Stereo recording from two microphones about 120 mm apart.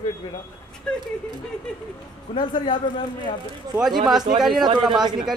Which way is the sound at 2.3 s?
45° left (ahead or behind).